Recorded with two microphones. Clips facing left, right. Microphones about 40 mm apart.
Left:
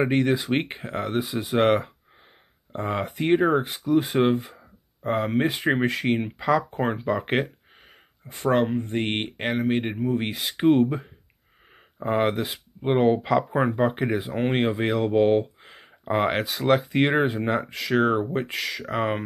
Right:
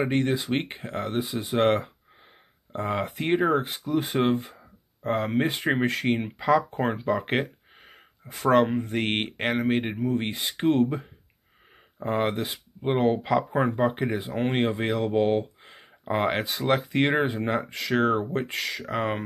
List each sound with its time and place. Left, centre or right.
0.0 s speech: left
2.7 s speech: centre
4.5 s a sound: centre
5.6 s speech: centre
8.4 s speech: centre
17.6 s speech: left
17.9 s speech: centre